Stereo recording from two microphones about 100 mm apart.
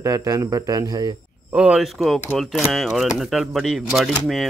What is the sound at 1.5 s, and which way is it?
Speech, 10° right (ahead or behind).